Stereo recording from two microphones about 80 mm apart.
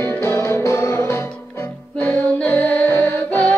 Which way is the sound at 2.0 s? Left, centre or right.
Centre.